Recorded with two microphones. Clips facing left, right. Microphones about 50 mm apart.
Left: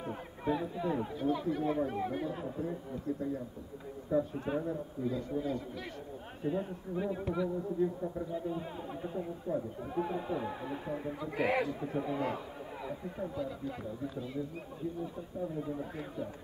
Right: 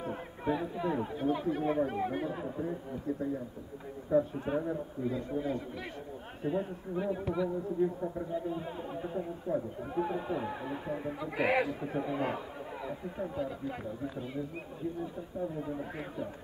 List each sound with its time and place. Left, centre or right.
0.0 s speech: centre
5.0 s speech: right
6.4 s speech: centre
11.1 s speech: right
11.5 s speech: centre
13.4 s speech: right
15.4 s speech: centre